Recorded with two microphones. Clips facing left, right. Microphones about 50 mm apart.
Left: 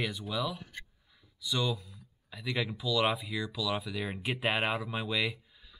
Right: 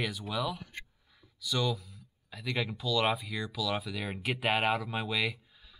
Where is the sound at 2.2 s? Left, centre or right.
Centre.